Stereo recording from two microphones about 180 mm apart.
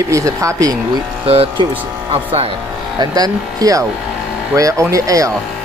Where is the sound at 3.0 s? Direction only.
20° right (ahead or behind).